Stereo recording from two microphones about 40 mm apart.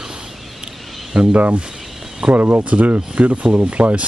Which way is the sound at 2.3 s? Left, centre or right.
Right.